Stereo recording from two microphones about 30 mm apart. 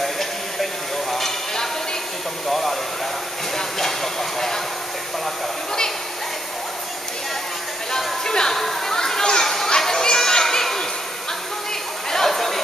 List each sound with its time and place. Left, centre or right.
0.0 s a sound: centre
3.5 s train: centre
7.9 s a sound: centre
8.5 s chatter: centre
8.9 s children playing: centre
12.1 s chatter: centre